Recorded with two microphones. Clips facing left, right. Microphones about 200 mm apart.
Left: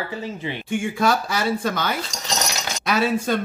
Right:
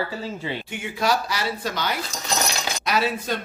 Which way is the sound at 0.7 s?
50° left (ahead or behind).